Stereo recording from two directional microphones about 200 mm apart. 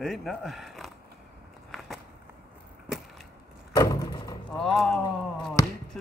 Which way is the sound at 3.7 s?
20° left (ahead or behind).